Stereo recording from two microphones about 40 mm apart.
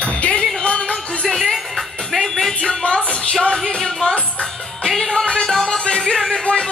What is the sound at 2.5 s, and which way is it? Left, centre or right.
Music, left.